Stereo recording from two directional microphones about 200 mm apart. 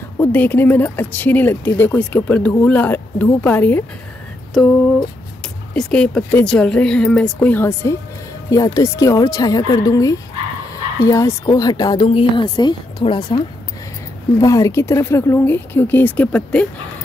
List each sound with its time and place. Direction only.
0.2 s speech: 10° left (ahead or behind)
5.8 s speech: 5° left (ahead or behind); by 13.4 s 25° left (ahead or behind)
14.4 s speech: 15° left (ahead or behind)